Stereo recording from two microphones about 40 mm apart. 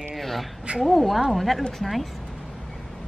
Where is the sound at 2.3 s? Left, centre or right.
Centre.